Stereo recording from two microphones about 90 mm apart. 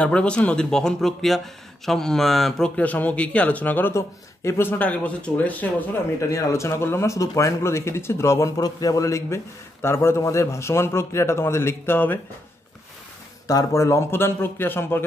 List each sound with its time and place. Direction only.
0.0 s speech: 10° left (ahead or behind)
2.7 s speech: 15° left (ahead or behind)
3.9 s speech: 30° left (ahead or behind); by 5.7 s 15° left (ahead or behind)
6.2 s speech: 35° left (ahead or behind)
13.5 s speech: 35° left (ahead or behind)